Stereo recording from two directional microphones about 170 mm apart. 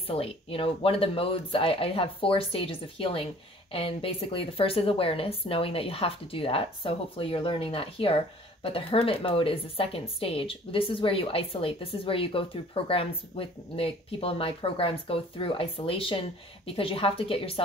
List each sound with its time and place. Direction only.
0.0 s a woman's voice: 35° left (ahead or behind)